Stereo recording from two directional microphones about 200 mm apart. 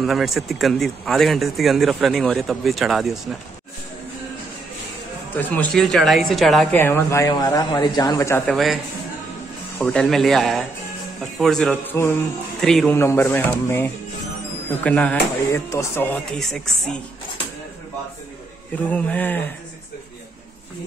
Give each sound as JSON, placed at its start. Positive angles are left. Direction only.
{"t": 0.0, "sound": "speech", "side_deg": 0}
{"t": 5.4, "sound": "speech", "side_deg": 5}
{"t": 6.8, "sound": "speech", "side_deg": 10}
{"t": 9.8, "sound": "speech", "side_deg": 5}
{"t": 18.9, "sound": "speech", "side_deg": 5}